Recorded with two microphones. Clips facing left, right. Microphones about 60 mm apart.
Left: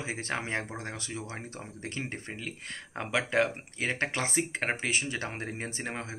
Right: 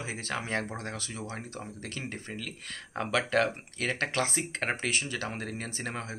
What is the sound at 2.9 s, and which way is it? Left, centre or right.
Speech, centre.